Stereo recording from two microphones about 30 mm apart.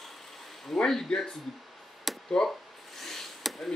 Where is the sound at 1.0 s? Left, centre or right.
Left.